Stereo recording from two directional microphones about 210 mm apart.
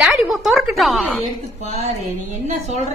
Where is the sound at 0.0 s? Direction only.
Centre (ahead or behind).